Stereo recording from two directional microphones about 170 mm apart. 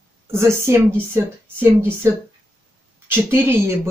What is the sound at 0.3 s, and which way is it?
Speech, 15° right (ahead or behind).